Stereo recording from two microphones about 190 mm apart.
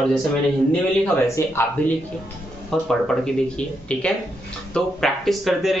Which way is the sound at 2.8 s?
Centre (ahead or behind).